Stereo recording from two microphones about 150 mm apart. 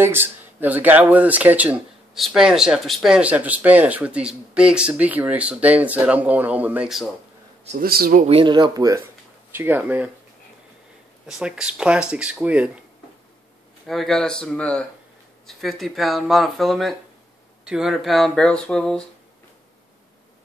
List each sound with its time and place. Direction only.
0.0 s speech: 15° right (ahead or behind)
7.8 s speech: 80° right
8.2 s speech: 40° right (ahead or behind)
9.5 s speech: 15° right (ahead or behind)
11.2 s speech: 5° right (ahead or behind)
13.8 s speech: centre (ahead or behind)